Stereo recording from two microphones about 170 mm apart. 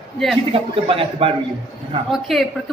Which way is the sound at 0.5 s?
35° right (ahead or behind).